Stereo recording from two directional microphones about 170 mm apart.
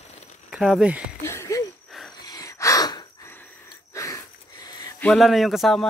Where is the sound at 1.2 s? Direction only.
15° left (ahead or behind).